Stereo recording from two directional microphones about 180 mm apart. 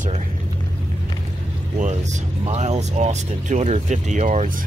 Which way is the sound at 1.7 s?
45° right (ahead or behind).